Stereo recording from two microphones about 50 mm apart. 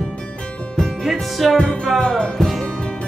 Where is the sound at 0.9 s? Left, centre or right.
Centre.